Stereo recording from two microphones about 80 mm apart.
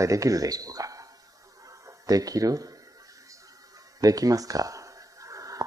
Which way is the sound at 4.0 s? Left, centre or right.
Right.